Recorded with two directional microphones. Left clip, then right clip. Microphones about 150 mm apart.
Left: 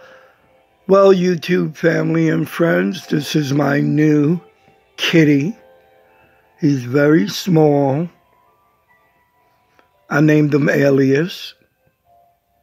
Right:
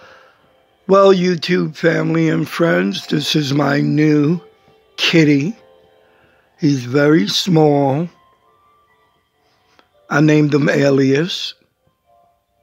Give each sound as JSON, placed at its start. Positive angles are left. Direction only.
{"t": 0.0, "sound": "a sound", "side_deg": -5}
{"t": 0.8, "sound": "speech", "side_deg": -5}
{"t": 9.8, "sound": "speech", "side_deg": -5}